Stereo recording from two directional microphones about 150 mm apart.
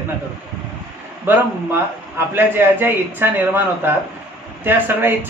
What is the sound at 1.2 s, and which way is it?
A man's voice, 15° right (ahead or behind).